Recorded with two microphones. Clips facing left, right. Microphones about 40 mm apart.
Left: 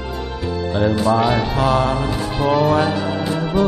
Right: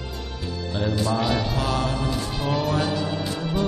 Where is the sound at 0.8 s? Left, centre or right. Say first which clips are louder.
Left 8 dB; left.